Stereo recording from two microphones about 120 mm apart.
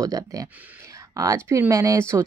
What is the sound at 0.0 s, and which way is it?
Speech, 30° right (ahead or behind).